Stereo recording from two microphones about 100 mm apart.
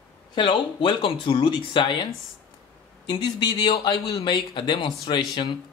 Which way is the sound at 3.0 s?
50° left (ahead or behind).